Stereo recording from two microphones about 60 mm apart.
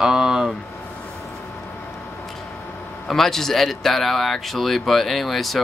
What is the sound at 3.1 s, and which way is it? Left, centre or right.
Speech, centre.